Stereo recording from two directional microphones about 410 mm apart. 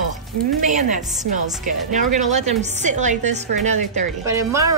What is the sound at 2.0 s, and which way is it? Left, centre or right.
Speech, centre.